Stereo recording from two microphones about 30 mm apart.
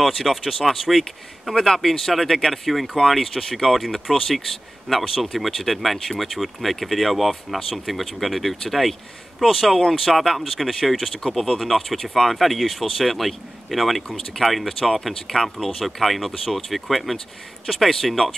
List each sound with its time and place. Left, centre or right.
0.0 s speech: centre
14.0 s speech: centre
14.4 s speech: centre
14.8 s speech: centre